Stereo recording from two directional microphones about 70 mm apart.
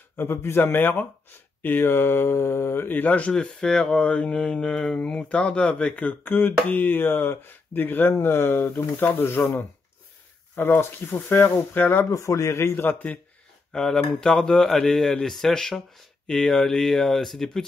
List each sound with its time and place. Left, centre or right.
0.2 s speech: left
3.6 s speech: centre; by 12.1 s left
12.1 s speech: left
12.7 s speech: left
13.7 s speech: centre